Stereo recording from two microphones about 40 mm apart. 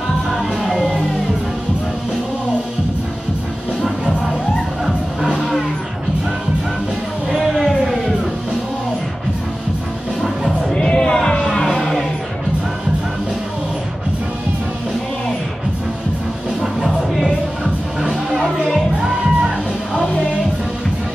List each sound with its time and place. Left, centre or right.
0.3 s music: centre
10.7 s choir: left
11.7 s music: centre
16.8 s music: centre
18.5 s music: centre